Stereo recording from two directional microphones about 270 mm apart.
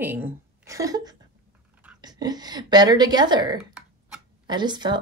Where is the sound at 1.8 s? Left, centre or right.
Centre.